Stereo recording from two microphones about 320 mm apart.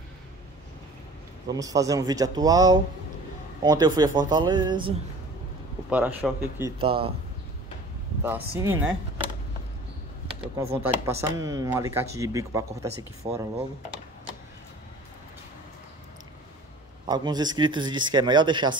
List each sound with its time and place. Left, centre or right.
1.5 s speech: centre
5.9 s a man's voice: centre
6.8 s speech: centre
8.2 s speech: centre
10.4 s speech: centre
17.0 s speech: centre